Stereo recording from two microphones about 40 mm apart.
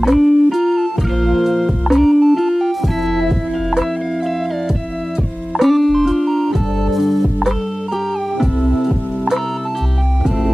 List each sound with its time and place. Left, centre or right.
0.0 s music: centre
5.6 s music: centre